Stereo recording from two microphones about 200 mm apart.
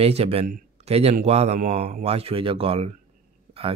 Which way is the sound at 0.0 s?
30° right (ahead or behind).